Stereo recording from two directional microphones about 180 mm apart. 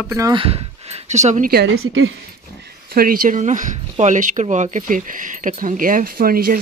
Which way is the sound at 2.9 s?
55° right (ahead or behind).